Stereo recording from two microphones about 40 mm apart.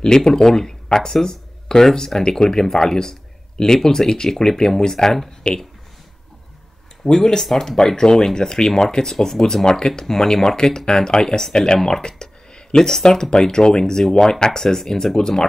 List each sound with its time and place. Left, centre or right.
0.0 s speech: centre
7.1 s speech: centre